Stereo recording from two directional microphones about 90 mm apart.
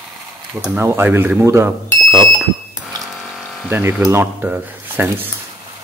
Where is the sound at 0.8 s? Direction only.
25° right (ahead or behind).